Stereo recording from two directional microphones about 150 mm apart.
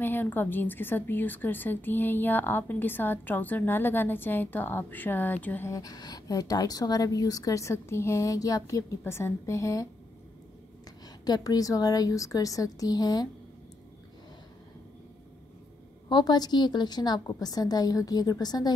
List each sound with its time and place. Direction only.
0.0 s a woman's voice: 15° left (ahead or behind)
11.2 s a woman's voice: 25° left (ahead or behind)
16.1 s a woman's voice: 30° left (ahead or behind)